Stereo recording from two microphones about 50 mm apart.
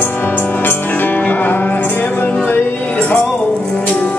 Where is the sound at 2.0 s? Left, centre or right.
Left.